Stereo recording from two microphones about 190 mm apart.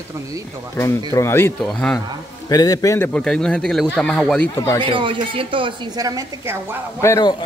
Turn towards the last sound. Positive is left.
turn(degrees=15)  # may be behind; listen again after turning